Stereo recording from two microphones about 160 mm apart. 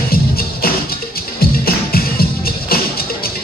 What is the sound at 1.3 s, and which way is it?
Music, 70° left (ahead or behind).